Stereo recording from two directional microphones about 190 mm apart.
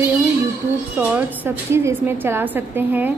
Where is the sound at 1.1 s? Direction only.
10° right (ahead or behind).